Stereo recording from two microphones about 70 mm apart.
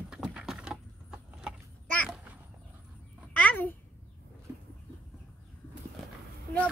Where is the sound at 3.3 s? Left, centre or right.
Centre.